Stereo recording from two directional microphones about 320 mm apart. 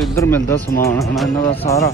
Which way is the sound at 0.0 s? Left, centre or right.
Centre.